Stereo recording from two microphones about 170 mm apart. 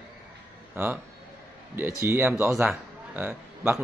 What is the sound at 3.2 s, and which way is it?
Speech, 10° right (ahead or behind).